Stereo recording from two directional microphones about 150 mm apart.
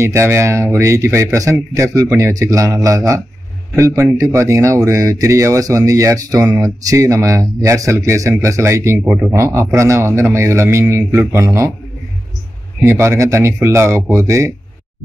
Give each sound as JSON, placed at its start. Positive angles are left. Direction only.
{"t": 0.0, "sound": "speech", "side_deg": -20}
{"t": 12.8, "sound": "speech", "side_deg": -20}